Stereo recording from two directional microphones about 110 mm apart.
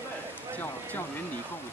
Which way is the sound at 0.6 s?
20° left (ahead or behind).